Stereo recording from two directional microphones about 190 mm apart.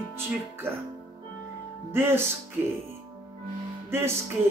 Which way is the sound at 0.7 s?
10° right (ahead or behind).